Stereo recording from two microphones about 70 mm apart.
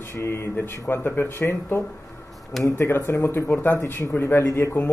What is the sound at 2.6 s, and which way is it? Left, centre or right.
Speech, left.